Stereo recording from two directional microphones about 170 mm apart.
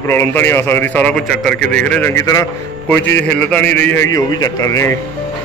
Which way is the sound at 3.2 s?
5° left (ahead or behind).